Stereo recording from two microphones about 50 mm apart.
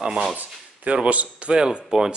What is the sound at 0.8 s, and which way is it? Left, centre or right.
Speech, right.